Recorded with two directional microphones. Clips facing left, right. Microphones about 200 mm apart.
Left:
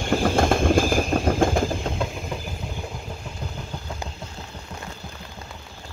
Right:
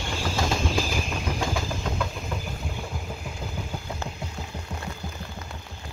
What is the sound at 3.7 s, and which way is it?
Vehicle, 10° right (ahead or behind).